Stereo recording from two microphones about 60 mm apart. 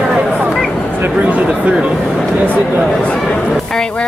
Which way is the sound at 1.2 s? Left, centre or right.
Right.